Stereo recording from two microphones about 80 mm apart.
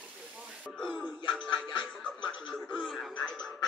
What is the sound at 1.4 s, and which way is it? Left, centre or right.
Music, left.